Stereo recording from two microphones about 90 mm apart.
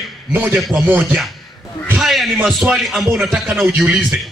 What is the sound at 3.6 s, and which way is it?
Speech, 20° right (ahead or behind).